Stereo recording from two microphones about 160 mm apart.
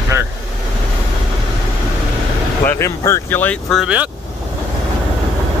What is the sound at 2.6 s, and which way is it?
Speech, 15° left (ahead or behind).